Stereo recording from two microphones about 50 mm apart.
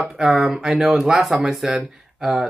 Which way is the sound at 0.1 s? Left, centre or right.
Centre.